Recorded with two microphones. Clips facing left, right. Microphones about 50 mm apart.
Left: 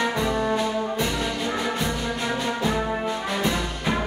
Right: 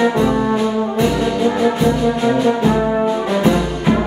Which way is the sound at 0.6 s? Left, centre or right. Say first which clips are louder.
Right 8 dB; centre.